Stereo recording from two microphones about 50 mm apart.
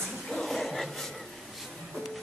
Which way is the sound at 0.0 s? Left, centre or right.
Centre.